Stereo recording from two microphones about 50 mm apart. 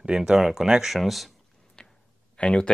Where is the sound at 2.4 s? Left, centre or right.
Centre.